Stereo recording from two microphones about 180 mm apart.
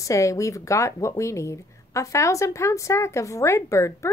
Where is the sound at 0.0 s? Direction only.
15° left (ahead or behind).